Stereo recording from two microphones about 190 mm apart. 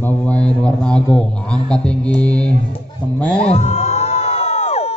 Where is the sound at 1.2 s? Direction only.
5° left (ahead or behind).